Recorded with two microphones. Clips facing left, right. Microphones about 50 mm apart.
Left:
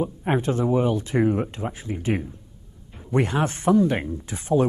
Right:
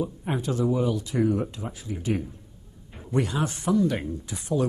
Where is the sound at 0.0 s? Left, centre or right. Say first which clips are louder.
Left 5 dB; left.